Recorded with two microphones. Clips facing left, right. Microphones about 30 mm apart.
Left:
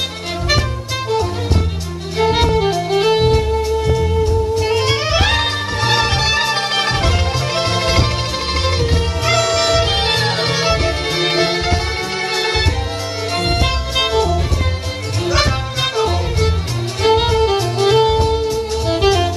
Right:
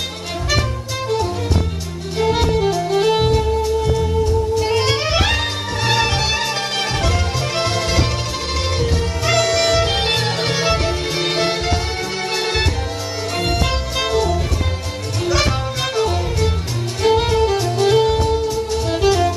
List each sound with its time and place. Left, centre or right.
2.1 s music: left
4.6 s music: centre; by 8.9 s left
9.2 s music: centre
15.3 s music: left